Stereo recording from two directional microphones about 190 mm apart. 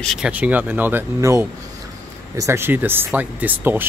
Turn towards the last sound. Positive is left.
turn(degrees=-10)  # may be behind; listen again after turning